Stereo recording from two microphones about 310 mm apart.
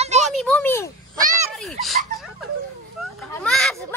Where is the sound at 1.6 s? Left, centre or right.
Centre.